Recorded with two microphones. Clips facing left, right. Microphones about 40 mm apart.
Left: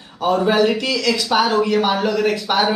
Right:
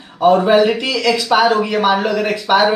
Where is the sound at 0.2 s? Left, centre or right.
Centre.